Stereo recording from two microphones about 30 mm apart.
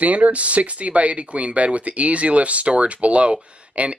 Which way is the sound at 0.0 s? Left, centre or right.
Right.